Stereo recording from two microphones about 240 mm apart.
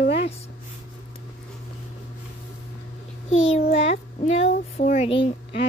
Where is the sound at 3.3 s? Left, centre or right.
Left.